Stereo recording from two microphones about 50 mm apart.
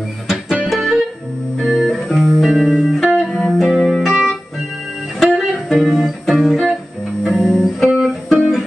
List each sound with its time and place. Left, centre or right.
0.3 s music: centre
5.2 s music: centre